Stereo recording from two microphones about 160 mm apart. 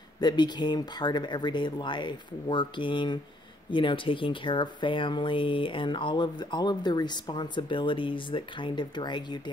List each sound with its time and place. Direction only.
0.2 s speech: 25° left (ahead or behind)